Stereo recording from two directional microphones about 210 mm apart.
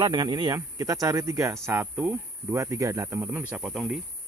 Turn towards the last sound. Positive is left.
turn(degrees=0)  # may be behind; listen again after turning